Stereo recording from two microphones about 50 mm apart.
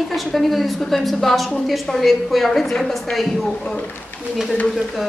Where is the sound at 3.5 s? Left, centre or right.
Centre.